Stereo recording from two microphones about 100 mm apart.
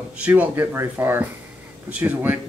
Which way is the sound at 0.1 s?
15° right (ahead or behind).